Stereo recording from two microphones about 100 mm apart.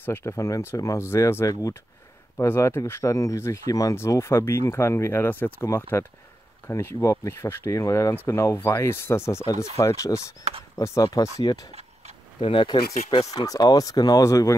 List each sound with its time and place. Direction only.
0.0 s speech: 25° left (ahead or behind)
10.5 s speech: 90° right
11.3 s speech: 35° left (ahead or behind)
12.4 s speech: 70° left (ahead or behind)
13.0 s speech: 90° left
13.3 s speech: 40° left (ahead or behind)